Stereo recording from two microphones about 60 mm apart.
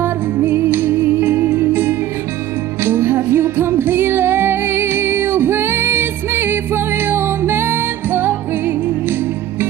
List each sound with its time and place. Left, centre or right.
0.0 s music: right